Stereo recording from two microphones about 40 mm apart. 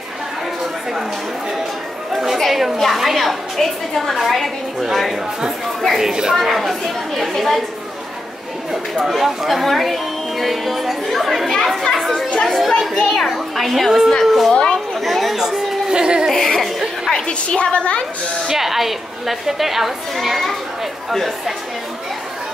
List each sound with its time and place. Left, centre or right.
2.1 s a woman's voice: centre
5.9 s a woman's voice: centre
9.2 s speech: centre
11.9 s chatter: centre
12.4 s a woman's voice: centre
14.5 s a woman's voice: left
15.0 s chatter: centre
15.9 s speech: right
16.3 s speech: centre
17.3 s a woman's voice: left
18.5 s a woman's voice: centre